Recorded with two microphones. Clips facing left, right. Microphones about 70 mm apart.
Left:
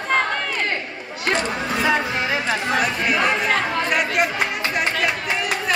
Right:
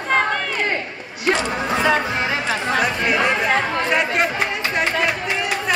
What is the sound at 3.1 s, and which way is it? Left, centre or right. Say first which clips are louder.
Chatter: right 1 dB; centre.